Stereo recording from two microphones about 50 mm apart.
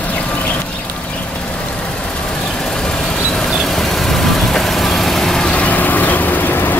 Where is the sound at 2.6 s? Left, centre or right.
Centre.